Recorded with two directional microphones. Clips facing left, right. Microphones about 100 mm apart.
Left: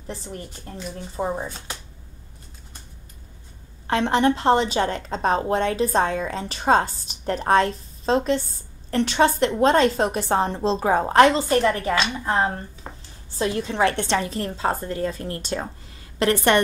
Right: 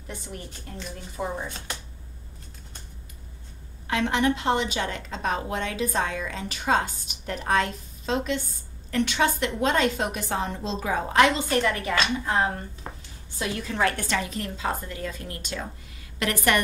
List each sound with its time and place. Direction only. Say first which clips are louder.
0.0 s a woman's voice: left 4 dB; 30° left (ahead or behind)
3.8 s a woman's voice: left 4 dB; 35° left (ahead or behind)
12.9 s a sound: even; 5° left (ahead or behind)
13.3 s a woman's voice: left 6 dB; 30° left (ahead or behind)